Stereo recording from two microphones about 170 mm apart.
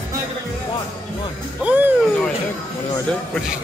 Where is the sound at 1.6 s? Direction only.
5° right (ahead or behind).